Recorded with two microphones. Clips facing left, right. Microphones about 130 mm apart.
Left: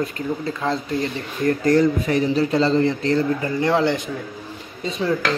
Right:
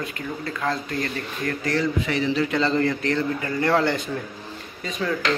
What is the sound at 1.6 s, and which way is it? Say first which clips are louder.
A man's voice: left 6 dB; 45° left (ahead or behind).